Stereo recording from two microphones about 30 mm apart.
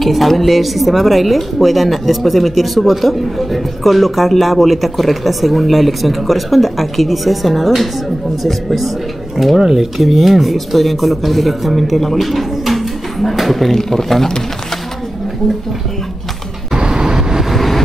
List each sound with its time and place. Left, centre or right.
0.0 s speech: centre
9.4 s dishes: centre
9.8 s speech: centre
13.7 s speech: centre
16.7 s vehicle: right
17.5 s vehicle: centre